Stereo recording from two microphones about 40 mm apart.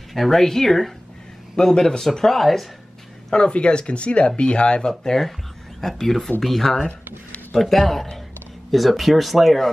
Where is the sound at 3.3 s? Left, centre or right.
Left.